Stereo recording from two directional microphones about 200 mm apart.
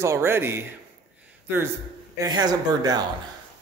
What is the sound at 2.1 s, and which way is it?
Speech, 20° right (ahead or behind).